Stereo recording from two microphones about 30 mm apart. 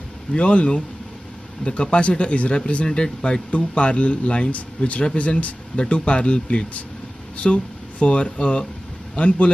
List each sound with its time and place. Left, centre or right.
0.3 s speech: left